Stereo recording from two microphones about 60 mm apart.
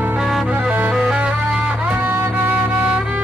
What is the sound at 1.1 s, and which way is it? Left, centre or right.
Music, centre.